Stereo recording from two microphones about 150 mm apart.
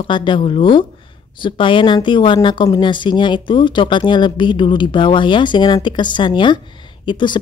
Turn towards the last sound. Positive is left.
turn(degrees=30)  # may be behind; listen again after turning